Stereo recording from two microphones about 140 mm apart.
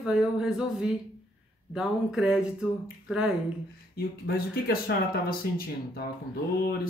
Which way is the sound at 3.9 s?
90° left.